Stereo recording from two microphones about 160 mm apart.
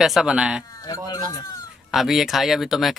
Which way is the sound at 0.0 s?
5° right (ahead or behind).